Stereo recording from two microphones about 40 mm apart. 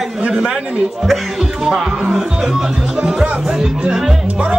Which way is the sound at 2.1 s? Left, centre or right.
Centre.